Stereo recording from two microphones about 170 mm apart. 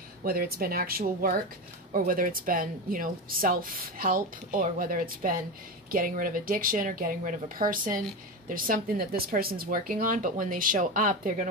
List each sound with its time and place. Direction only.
0.2 s a woman's voice: 60° right (ahead or behind)